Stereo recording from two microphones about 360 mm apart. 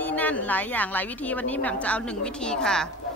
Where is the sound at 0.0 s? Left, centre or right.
Centre.